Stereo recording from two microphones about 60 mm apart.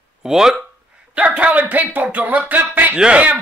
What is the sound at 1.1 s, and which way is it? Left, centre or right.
Speech, right.